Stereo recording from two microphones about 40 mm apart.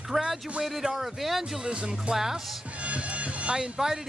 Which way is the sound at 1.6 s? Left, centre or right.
Right.